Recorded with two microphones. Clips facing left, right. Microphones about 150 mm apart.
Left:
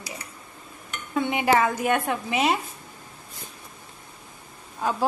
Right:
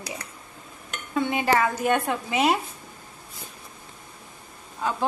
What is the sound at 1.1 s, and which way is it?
Speech, 15° left (ahead or behind).